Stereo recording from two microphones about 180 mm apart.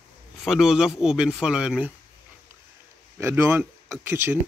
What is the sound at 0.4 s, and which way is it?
Speech, centre (ahead or behind).